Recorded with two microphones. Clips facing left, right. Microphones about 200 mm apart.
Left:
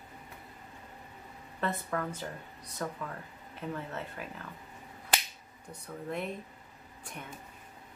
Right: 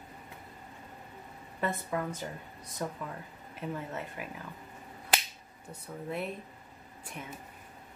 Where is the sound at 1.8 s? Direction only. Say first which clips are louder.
Right 1 dB; 15° right (ahead or behind).